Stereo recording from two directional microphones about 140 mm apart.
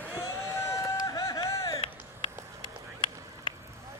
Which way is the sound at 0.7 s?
25° left (ahead or behind).